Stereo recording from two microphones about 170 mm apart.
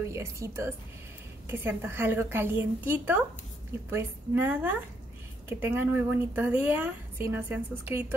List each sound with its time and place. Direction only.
0.0 s speech: 15° right (ahead or behind)